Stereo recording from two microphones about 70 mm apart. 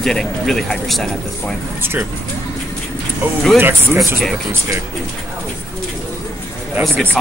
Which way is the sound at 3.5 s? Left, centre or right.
Right.